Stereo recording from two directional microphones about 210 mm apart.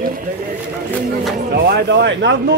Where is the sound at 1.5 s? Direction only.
50° right (ahead or behind).